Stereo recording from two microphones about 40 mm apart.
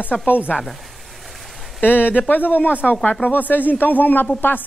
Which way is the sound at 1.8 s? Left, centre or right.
Left.